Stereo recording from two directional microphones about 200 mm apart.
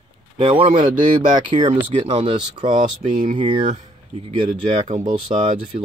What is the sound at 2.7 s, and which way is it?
Speech, 40° right (ahead or behind).